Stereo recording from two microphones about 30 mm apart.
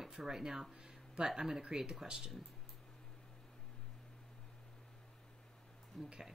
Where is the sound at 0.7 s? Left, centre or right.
Right.